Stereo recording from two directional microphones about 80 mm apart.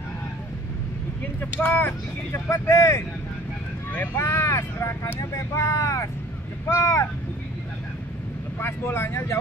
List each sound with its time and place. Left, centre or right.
1.6 s speech: left
3.9 s speech: left
8.5 s speech: left